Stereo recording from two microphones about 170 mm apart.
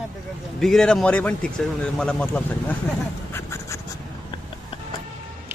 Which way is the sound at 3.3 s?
15° left (ahead or behind).